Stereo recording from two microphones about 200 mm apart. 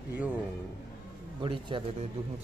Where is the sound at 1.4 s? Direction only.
25° right (ahead or behind).